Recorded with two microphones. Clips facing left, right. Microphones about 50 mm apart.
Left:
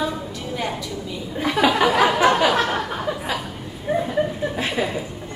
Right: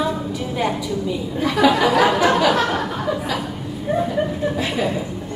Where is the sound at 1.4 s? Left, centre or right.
Left.